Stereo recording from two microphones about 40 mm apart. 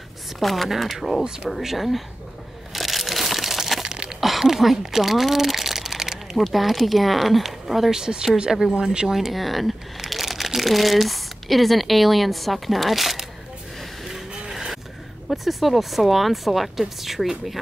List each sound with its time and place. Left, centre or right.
0.4 s speech: centre
2.7 s crumpling: centre
3.8 s a sound: right
4.2 s a sound: centre
6.3 s speech: centre
8.5 s speech: centre
14.5 s vehicle: centre
15.2 s speech: centre